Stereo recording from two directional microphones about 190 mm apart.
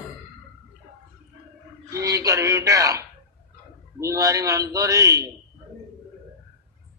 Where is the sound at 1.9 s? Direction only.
15° right (ahead or behind).